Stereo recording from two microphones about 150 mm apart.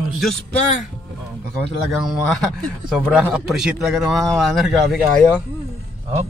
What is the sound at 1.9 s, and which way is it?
A man's voice, centre (ahead or behind).